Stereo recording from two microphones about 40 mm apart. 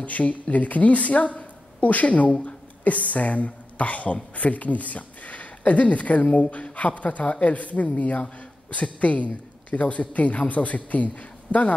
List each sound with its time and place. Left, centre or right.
0.0 s speech: left